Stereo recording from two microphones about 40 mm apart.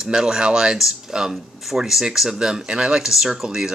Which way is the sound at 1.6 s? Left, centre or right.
Centre.